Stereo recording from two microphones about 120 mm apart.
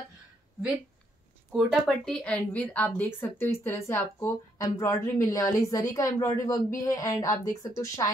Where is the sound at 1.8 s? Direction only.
5° left (ahead or behind).